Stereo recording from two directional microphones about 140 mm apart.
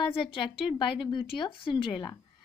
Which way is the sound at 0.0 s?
40° left (ahead or behind).